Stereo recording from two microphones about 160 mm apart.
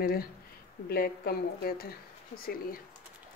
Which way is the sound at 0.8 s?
75° left (ahead or behind).